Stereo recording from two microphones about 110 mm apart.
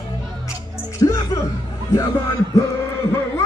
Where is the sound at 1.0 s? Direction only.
35° left (ahead or behind).